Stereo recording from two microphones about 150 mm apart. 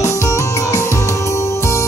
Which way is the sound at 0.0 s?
20° left (ahead or behind).